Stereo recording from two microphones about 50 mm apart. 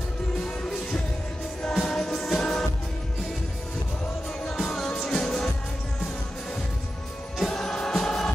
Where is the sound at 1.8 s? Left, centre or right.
Centre.